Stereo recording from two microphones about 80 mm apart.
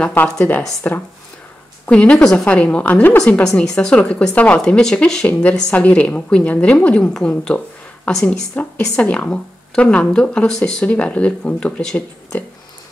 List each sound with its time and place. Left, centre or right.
0.2 s a woman's voice: left; by 12.4 s centre